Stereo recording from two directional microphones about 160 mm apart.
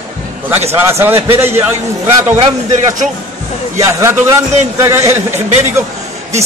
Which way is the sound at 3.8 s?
20° right (ahead or behind).